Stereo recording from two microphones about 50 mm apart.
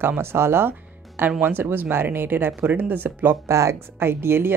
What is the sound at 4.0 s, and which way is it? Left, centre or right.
Speech, right.